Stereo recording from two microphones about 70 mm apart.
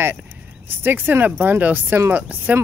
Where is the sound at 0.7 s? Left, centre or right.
Right.